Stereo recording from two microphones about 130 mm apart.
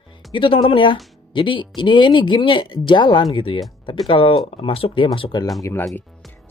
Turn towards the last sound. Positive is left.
turn(degrees=20)  # may be behind; listen again after turning